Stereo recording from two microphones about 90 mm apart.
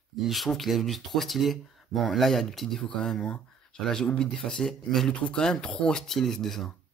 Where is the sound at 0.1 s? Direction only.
Centre (ahead or behind).